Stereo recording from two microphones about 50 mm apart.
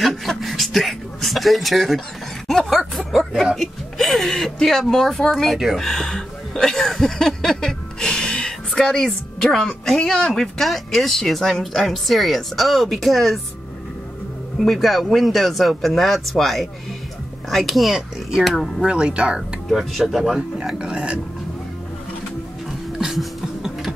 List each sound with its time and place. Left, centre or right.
0.0 s speech: centre
2.4 s bow-wow: centre
3.5 s a woman's voice: centre
5.8 s a sound: centre
10.0 s a woman's voice: centre
14.6 s a woman's voice: centre
18.8 s speech: centre
19.7 s a woman's voice: centre
20.3 s speech: centre
22.7 s music: centre